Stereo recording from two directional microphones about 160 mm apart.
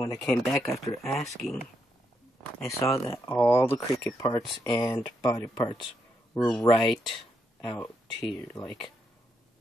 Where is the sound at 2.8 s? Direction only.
20° left (ahead or behind).